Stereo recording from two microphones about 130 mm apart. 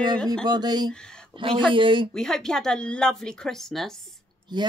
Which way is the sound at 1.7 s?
40° right (ahead or behind).